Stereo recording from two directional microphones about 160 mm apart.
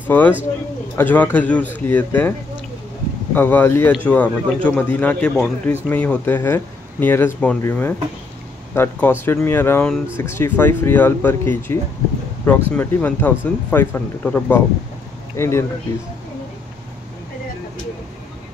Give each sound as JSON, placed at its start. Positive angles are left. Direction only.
{"t": 0.1, "sound": "speech", "side_deg": 10}
{"t": 3.3, "sound": "speech", "side_deg": 15}